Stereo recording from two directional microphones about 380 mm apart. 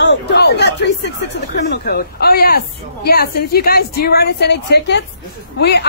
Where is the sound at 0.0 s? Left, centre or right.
Left.